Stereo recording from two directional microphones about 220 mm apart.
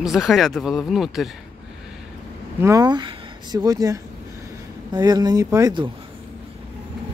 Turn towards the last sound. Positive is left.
turn(degrees=-20)  # may be behind; listen again after turning